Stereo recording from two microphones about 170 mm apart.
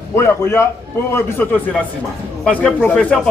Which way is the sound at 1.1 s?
10° left (ahead or behind).